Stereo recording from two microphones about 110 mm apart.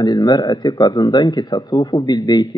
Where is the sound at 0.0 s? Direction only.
40° left (ahead or behind).